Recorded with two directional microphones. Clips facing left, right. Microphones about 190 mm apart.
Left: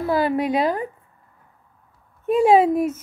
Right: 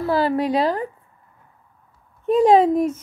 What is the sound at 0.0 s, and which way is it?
Speech, 20° left (ahead or behind).